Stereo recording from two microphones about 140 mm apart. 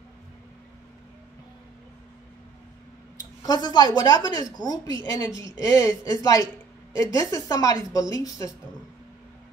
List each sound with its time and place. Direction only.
3.2 s a woman's voice: 30° left (ahead or behind)